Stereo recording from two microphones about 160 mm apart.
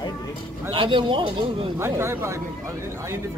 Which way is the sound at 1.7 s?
15° right (ahead or behind).